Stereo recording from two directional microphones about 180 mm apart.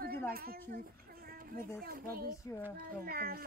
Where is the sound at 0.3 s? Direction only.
55° right (ahead or behind).